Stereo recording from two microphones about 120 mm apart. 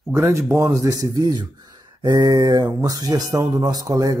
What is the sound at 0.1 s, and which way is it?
A man's voice, 20° right (ahead or behind).